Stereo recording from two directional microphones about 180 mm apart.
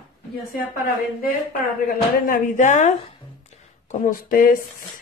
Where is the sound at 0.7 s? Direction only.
55° left (ahead or behind).